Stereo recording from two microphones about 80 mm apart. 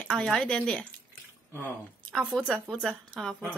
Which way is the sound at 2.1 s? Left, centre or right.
Centre.